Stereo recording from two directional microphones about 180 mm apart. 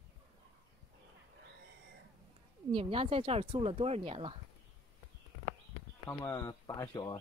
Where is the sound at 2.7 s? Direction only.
30° right (ahead or behind).